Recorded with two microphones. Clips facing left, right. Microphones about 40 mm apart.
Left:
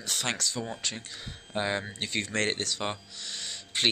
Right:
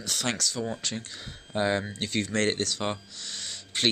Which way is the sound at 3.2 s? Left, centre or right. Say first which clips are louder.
Left 2 dB; centre.